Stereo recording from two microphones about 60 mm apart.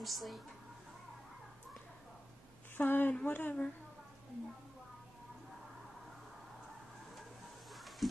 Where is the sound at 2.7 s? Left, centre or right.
Left.